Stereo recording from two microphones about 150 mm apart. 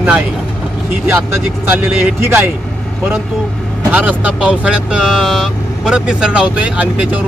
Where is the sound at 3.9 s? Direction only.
10° right (ahead or behind).